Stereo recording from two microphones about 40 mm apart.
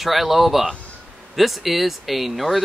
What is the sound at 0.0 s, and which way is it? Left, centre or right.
Speech, centre.